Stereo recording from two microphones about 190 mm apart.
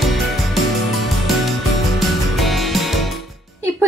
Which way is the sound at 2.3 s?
Centre (ahead or behind).